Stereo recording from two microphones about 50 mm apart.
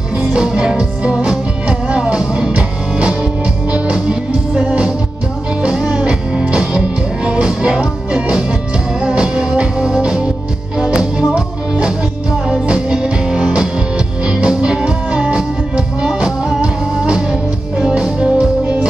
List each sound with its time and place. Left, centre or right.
0.2 s music: right
16.6 s music: right